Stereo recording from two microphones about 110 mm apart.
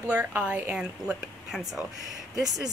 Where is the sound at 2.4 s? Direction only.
35° right (ahead or behind).